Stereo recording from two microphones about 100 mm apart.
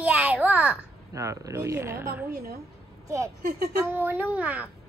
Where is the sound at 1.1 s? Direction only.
30° right (ahead or behind); by 4.7 s 15° right (ahead or behind).